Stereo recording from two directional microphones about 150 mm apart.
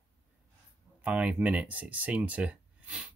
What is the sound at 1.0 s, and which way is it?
Speech, 10° right (ahead or behind).